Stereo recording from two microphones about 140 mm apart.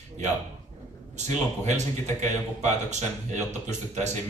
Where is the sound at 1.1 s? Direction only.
55° right (ahead or behind).